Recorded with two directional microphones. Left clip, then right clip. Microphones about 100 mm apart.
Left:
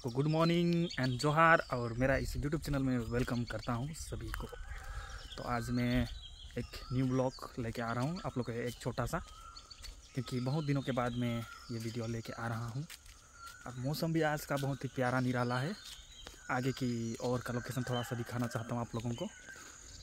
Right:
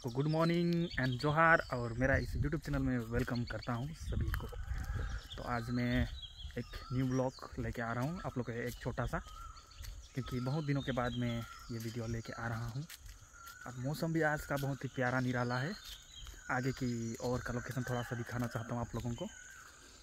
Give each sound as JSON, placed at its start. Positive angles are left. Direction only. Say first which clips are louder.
{"t": 0.2, "sound": "speech", "louder": "left 2 dB", "side_deg": 15}
{"t": 5.3, "sound": "speech", "louder": "left 2 dB", "side_deg": 10}
{"t": 13.8, "sound": "speech", "louder": "left 1 dB", "side_deg": 5}
{"t": 14.5, "sound": "speech", "louder": "left 2 dB", "side_deg": 15}